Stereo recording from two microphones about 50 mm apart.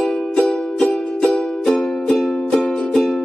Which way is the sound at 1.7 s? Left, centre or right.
Centre.